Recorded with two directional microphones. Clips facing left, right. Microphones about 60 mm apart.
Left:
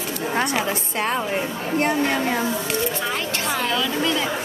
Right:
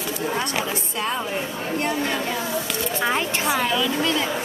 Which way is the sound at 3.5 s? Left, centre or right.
Centre.